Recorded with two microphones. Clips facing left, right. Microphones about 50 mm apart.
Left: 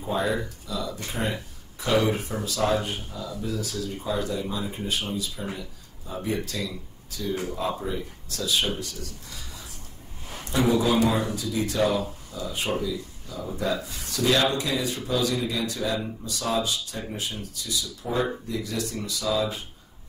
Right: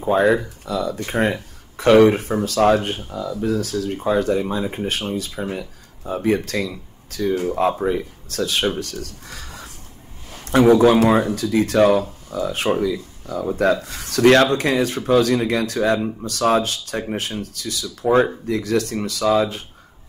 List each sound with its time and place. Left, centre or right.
0.0 s speech: right